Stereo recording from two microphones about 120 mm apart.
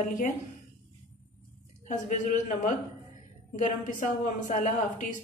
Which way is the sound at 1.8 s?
90° left.